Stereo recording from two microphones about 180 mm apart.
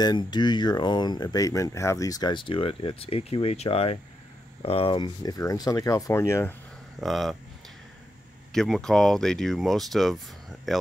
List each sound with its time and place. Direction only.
0.0 s speech: 25° left (ahead or behind)
7.0 s speech: centre (ahead or behind)
8.5 s speech: centre (ahead or behind)